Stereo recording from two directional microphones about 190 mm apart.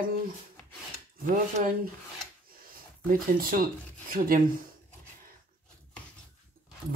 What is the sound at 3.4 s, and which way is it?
Speech, 50° right (ahead or behind).